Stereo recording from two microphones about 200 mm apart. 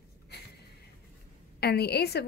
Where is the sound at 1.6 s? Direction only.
55° left (ahead or behind).